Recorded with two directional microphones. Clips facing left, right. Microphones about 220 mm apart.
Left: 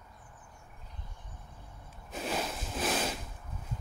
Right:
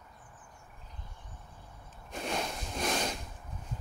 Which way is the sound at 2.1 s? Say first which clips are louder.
Left 1 dB; 5° left (ahead or behind).